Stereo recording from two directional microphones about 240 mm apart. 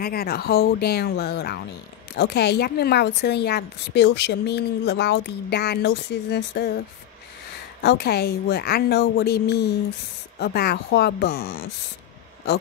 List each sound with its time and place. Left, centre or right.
0.0 s a woman's voice: left
7.8 s a woman's voice: left